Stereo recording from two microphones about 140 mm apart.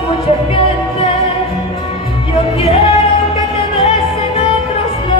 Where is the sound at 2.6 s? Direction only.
45° left (ahead or behind).